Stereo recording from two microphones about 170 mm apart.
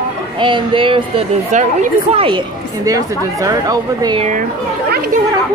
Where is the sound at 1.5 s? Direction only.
45° right (ahead or behind).